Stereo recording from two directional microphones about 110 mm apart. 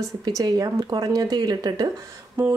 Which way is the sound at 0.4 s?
35° right (ahead or behind).